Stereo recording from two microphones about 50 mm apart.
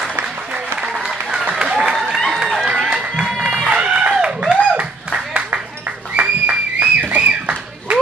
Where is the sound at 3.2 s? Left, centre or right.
Centre.